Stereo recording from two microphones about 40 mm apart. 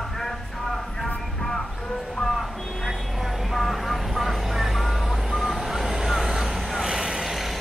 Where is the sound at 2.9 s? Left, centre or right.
Centre.